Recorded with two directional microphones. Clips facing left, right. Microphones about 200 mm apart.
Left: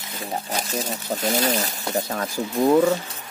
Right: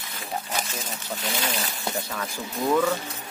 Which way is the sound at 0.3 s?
35° left (ahead or behind).